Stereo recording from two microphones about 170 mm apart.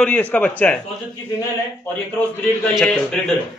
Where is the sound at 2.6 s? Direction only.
5° left (ahead or behind).